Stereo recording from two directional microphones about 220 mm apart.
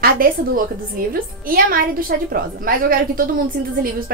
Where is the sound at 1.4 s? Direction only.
40° right (ahead or behind).